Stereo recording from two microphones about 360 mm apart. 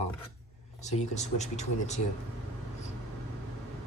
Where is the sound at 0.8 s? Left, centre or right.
Centre.